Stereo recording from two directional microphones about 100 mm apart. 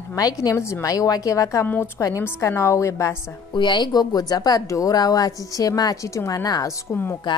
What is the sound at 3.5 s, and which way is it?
Speech, 50° left (ahead or behind).